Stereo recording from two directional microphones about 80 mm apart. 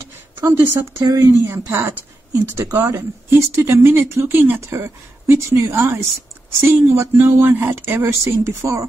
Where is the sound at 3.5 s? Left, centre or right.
Right.